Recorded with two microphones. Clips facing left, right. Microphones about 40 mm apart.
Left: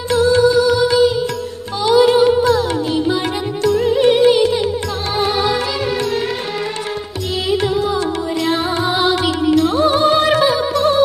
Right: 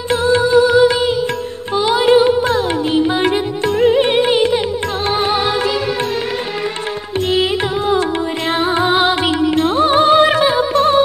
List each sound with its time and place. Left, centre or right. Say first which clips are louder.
0.1 s music: even; right
7.3 s music: left 2 dB; right